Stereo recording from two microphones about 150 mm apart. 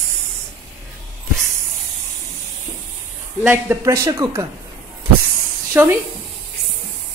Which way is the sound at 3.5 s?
20° right (ahead or behind).